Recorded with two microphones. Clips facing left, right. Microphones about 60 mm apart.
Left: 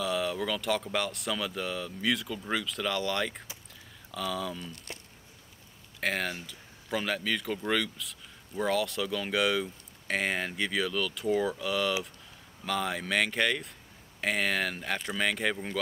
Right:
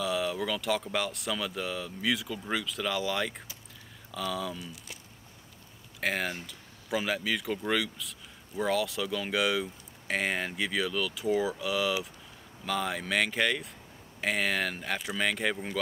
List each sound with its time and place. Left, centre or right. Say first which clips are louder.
0.0 s speech: even; centre
5.9 s speech: even; centre